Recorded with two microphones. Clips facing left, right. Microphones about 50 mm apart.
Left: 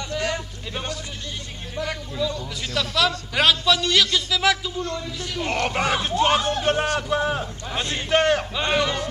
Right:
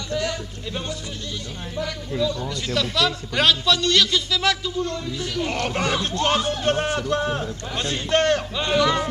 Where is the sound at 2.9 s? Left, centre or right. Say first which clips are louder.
Even; centre.